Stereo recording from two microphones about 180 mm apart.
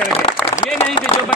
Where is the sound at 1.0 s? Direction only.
30° left (ahead or behind).